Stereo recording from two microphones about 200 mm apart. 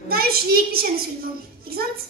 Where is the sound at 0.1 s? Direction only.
50° right (ahead or behind).